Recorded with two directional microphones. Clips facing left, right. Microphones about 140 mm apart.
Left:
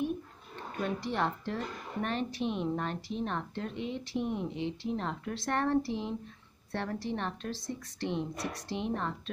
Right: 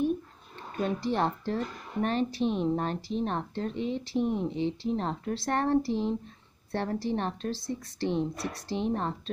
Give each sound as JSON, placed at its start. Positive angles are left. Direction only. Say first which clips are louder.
{"t": 0.7, "sound": "speech", "louder": "right 4 dB", "side_deg": -35}